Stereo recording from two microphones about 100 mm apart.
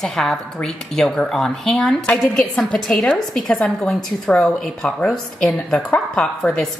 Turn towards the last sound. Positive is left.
turn(degrees=5)  # may be behind; listen again after turning